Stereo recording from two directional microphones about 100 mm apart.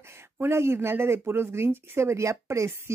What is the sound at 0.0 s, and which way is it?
Speech, 25° right (ahead or behind).